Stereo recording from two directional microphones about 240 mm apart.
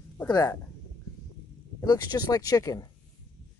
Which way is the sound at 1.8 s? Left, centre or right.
Centre.